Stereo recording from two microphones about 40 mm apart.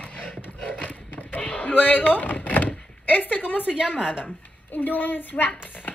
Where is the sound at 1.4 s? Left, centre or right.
Left.